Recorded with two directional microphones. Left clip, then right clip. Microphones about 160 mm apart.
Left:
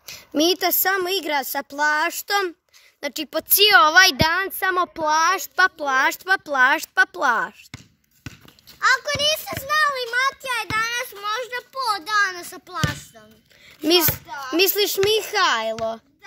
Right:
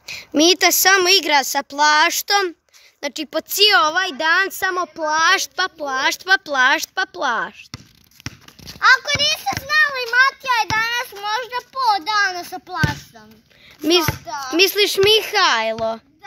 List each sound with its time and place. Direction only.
0.0 s a woman's voice: centre (ahead or behind)
4.7 s speech: 25° left (ahead or behind)
5.0 s speech: 10° left (ahead or behind)
8.7 s a child's voice: 45° right (ahead or behind)
14.0 s a child's voice: 35° right (ahead or behind)
14.5 s a woman's voice: 5° left (ahead or behind)